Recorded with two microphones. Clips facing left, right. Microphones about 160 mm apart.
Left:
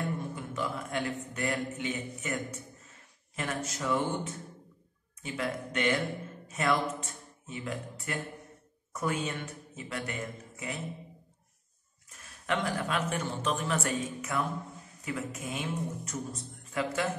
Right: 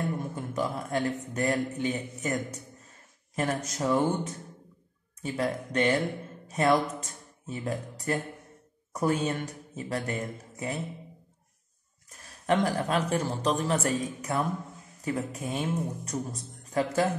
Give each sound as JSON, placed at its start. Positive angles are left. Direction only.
{"t": 0.4, "sound": "a man's voice", "side_deg": -40}
{"t": 12.1, "sound": "a man's voice", "side_deg": -35}